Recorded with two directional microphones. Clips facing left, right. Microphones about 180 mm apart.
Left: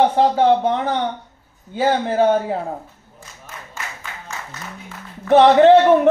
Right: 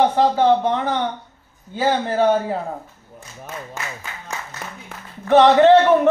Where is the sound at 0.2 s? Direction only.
15° left (ahead or behind).